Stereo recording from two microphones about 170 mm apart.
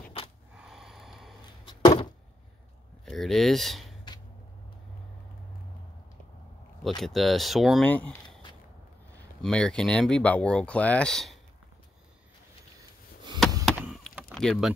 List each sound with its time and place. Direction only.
0.6 s snort: centre (ahead or behind)
1.9 s a sound: 30° left (ahead or behind)
3.1 s speech: centre (ahead or behind)
7.0 s speech: centre (ahead or behind)
9.4 s speech: 5° left (ahead or behind)
13.7 s vehicle: 5° right (ahead or behind)